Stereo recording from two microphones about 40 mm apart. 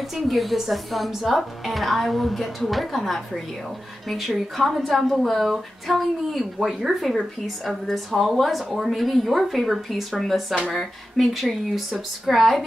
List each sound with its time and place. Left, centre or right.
0.1 s a woman's voice: centre
10.2 s a woman's voice: centre